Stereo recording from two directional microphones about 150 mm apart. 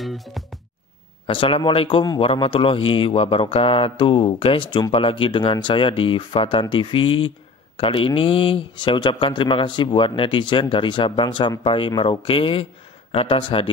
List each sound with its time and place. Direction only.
0.0 s music: centre (ahead or behind)
1.2 s a man's voice: 35° left (ahead or behind)